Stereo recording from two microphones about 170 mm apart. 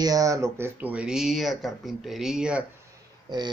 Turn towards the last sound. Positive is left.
turn(degrees=-25)  # may be behind; listen again after turning